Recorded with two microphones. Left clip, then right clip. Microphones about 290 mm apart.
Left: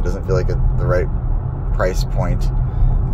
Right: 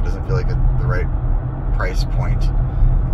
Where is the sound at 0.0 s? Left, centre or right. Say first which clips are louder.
Left 5 dB; left.